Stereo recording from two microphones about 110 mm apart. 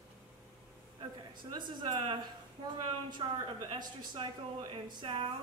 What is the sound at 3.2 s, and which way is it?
Speech, 45° right (ahead or behind).